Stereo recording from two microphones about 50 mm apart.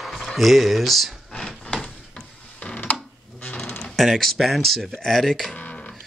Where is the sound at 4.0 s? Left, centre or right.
Centre.